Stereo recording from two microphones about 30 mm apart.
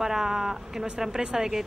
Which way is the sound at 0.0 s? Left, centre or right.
Centre.